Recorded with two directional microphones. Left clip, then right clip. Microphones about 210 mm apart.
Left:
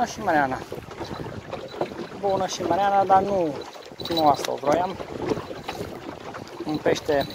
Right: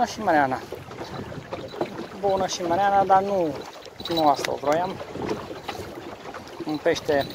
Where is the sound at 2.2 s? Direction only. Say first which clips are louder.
Even; 5° right (ahead or behind).